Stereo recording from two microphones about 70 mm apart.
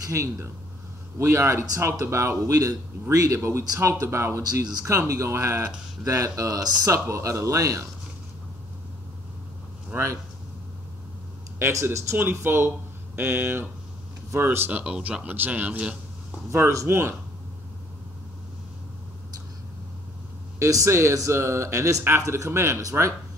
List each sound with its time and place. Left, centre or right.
0.0 s speech: right
7.1 s speech: right
9.9 s speech: right
11.7 s speech: right
14.7 s speech: centre
16.7 s speech: right
20.5 s speech: right